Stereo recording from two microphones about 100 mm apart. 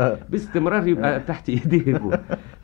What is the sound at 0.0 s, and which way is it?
Speech, 35° right (ahead or behind).